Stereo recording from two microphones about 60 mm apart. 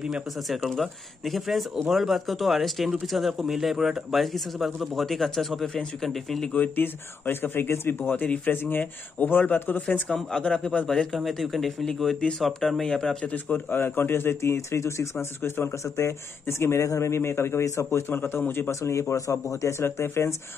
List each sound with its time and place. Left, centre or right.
0.0 s speech: centre
6.5 s speech: left
10.0 s speech: centre
13.2 s speech: left
15.8 s a man's voice: left
18.0 s speech: left
18.7 s a man's voice: left